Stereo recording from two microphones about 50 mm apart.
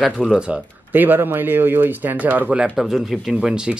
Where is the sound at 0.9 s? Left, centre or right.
Right.